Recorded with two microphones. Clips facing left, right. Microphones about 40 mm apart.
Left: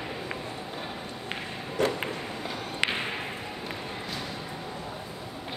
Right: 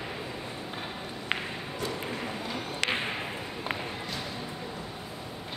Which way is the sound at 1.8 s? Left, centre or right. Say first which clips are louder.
Left 9 dB; left.